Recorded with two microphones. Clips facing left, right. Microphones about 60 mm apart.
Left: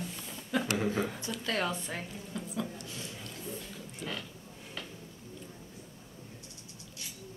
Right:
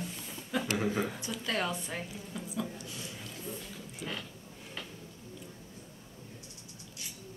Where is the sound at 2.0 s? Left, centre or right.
Centre.